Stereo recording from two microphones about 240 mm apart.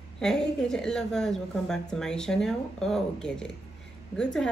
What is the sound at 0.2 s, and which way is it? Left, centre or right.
A woman's voice, centre.